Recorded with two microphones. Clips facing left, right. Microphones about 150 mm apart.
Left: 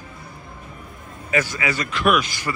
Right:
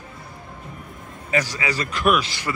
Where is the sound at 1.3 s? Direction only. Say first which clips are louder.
Left 1 dB; 35° right (ahead or behind).